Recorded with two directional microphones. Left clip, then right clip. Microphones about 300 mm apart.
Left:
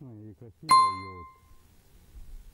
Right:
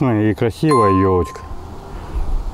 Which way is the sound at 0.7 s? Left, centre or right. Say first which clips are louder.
Right 4 dB; centre.